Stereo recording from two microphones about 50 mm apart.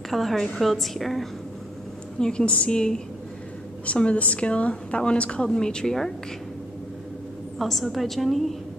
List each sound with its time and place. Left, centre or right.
0.1 s a woman's voice: centre
2.1 s a woman's voice: centre
7.5 s a woman's voice: centre